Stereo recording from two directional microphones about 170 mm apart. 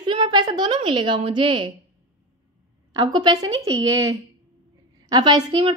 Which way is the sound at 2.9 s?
25° right (ahead or behind).